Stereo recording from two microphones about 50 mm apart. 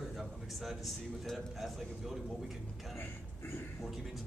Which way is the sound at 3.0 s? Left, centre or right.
Left.